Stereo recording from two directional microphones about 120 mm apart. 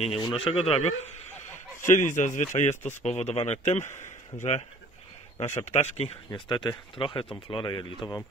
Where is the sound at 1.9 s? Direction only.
90° left.